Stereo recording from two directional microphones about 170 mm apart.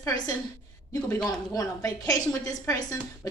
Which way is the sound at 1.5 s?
20° left (ahead or behind).